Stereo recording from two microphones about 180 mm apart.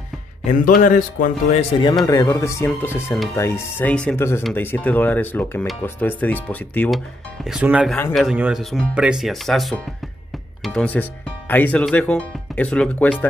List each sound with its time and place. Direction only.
0.5 s a man's voice: 45° left (ahead or behind)
2.0 s speech: 20° left (ahead or behind)
7.5 s speech: 5° right (ahead or behind)